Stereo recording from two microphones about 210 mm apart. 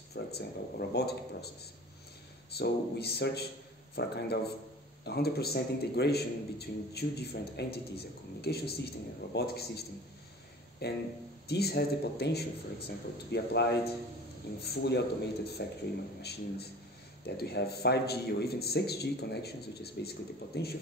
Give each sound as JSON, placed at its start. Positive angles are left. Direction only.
{"t": 0.1, "sound": "a man's voice", "side_deg": 50}